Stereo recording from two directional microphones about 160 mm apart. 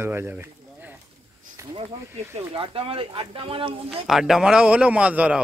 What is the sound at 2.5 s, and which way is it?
Speech, 35° right (ahead or behind).